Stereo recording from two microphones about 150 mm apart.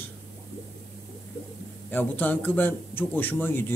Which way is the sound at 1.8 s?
10° left (ahead or behind).